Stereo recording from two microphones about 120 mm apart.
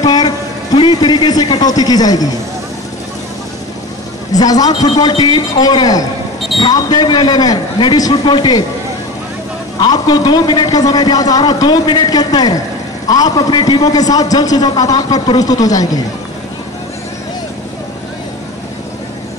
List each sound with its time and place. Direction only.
0.0 s a sound: 35° left (ahead or behind)
0.7 s a man's voice: 35° left (ahead or behind)
4.3 s a man's voice: 30° left (ahead or behind)
9.8 s a man's voice: 35° left (ahead or behind)